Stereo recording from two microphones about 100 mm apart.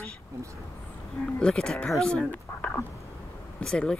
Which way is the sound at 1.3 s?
10° left (ahead or behind).